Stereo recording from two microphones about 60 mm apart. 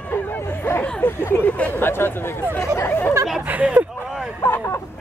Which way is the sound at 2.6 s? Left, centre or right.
Left.